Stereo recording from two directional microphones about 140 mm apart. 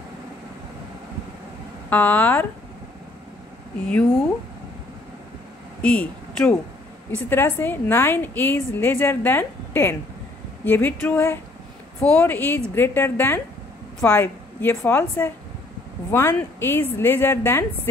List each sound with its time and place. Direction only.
1.9 s a woman's voice: 10° left (ahead or behind)
5.8 s a woman's voice: 10° left (ahead or behind)